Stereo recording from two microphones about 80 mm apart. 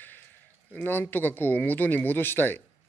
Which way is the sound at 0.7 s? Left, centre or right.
Left.